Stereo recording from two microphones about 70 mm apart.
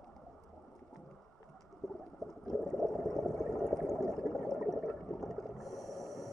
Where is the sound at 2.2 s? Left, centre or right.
Right.